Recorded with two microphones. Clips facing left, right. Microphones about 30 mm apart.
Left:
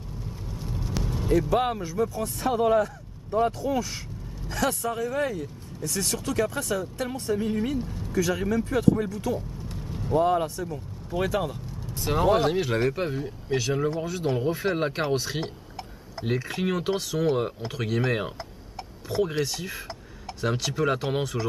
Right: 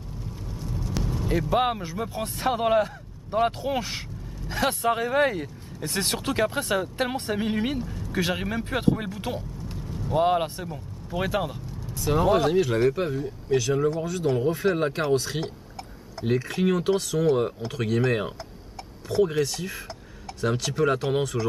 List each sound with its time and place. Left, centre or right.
0.6 s vehicle: centre
0.9 s vehicle: centre
1.5 s speech: right
2.1 s speech: right
4.5 s speech: right
4.8 s speech: right
9.7 s vehicle: centre
10.1 s speech: right
11.1 s speech: centre
12.0 s speech: centre